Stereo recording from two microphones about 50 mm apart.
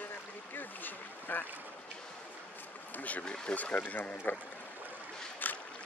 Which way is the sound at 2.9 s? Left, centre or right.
Left.